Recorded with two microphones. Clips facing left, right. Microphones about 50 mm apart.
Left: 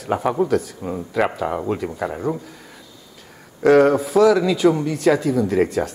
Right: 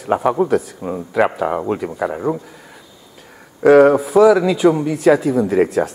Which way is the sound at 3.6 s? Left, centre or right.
Centre.